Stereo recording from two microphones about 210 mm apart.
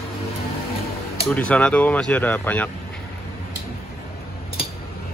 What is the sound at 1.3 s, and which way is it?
Speech, 5° left (ahead or behind).